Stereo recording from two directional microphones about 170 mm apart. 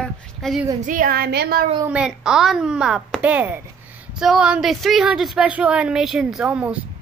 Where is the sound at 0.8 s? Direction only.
55° right (ahead or behind).